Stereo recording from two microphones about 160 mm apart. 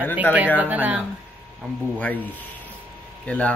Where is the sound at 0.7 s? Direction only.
10° right (ahead or behind).